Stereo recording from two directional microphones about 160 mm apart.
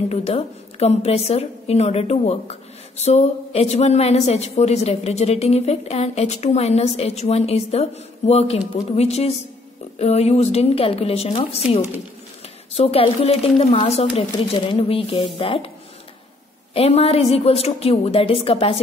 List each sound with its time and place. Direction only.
0.1 s a woman's voice: 40° left (ahead or behind)
12.7 s a woman's voice: 40° left (ahead or behind)
16.7 s a woman's voice: 40° left (ahead or behind)